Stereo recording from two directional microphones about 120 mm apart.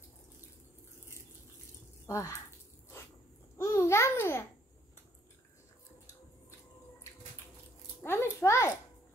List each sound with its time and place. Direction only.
2.0 s speech: 25° left (ahead or behind)
3.5 s babbling: 25° left (ahead or behind)
8.0 s children playing: 20° left (ahead or behind)